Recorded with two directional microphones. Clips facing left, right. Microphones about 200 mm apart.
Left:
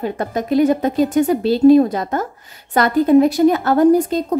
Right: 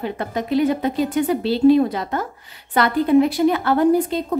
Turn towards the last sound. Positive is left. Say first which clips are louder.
# left 4 dB
turn(degrees=45)  # may be behind; listen again after turning